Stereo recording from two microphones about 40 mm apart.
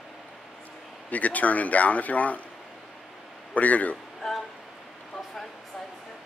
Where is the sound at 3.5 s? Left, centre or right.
Left.